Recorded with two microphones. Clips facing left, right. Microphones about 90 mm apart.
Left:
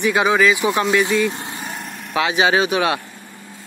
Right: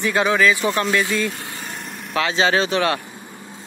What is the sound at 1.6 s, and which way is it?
Vehicle, 5° left (ahead or behind).